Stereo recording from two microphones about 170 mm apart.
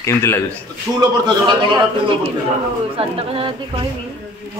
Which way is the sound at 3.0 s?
35° right (ahead or behind).